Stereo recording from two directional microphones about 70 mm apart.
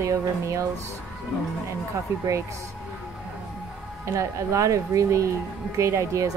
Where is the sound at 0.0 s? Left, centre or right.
Right.